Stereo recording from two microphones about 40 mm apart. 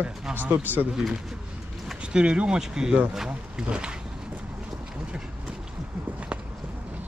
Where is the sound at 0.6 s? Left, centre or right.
Right.